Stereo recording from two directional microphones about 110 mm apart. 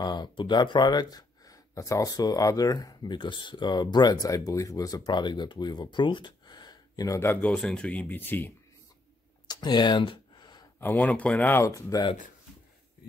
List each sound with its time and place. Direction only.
0.0 s speech: 40° left (ahead or behind)
7.2 s speech: 20° left (ahead or behind)
7.5 s speech: 5° left (ahead or behind)
9.5 s a sound: 40° left (ahead or behind)
10.8 s speech: 15° left (ahead or behind)
11.5 s speech: 30° left (ahead or behind)